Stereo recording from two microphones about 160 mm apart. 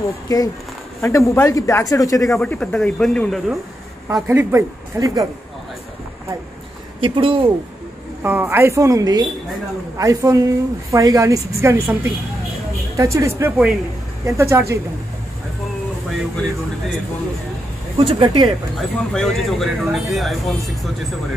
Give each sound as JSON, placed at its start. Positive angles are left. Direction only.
{"t": 0.3, "sound": "speech", "side_deg": 25}
{"t": 2.4, "sound": "speech", "side_deg": 5}
{"t": 4.1, "sound": "a woman's voice", "side_deg": -15}
{"t": 7.0, "sound": "speech", "side_deg": -35}
{"t": 8.2, "sound": "a woman's voice", "side_deg": -10}
{"t": 17.9, "sound": "speech", "side_deg": -35}
{"t": 18.8, "sound": "speech", "side_deg": 0}